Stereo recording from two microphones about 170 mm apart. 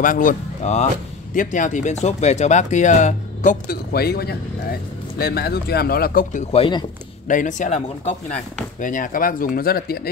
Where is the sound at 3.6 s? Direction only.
65° left (ahead or behind).